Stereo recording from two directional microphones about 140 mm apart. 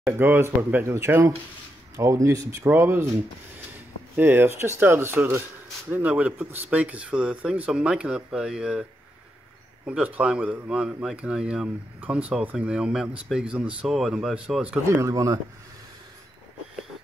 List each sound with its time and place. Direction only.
0.0 s speech: 15° right (ahead or behind)
4.2 s speech: 15° right (ahead or behind)
9.8 s speech: 10° right (ahead or behind)
14.9 s speech: 20° right (ahead or behind)